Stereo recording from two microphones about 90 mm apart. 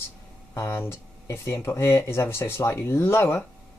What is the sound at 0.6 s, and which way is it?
Speech, 30° left (ahead or behind).